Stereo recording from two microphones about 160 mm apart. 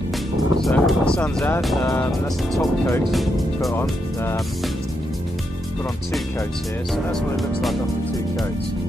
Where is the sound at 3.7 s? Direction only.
15° left (ahead or behind).